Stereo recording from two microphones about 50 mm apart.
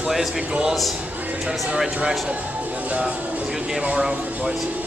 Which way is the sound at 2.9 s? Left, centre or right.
Right.